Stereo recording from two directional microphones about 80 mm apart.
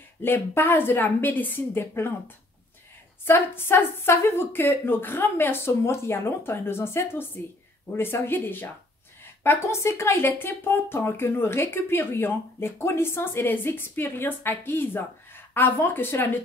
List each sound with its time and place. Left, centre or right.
0.2 s speech: left
3.3 s speech: left